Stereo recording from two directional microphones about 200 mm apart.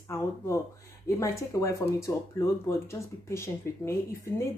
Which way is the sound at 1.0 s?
15° left (ahead or behind).